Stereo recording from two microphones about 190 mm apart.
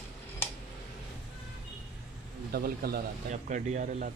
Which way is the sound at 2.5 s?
55° right (ahead or behind).